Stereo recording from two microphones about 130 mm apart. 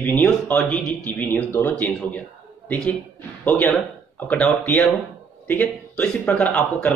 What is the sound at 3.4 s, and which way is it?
Speech, 10° left (ahead or behind).